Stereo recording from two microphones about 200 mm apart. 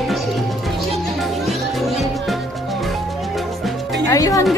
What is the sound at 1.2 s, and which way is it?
Music, centre (ahead or behind).